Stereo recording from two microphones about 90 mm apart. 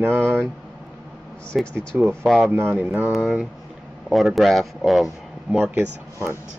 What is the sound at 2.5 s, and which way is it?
Speech, 20° right (ahead or behind).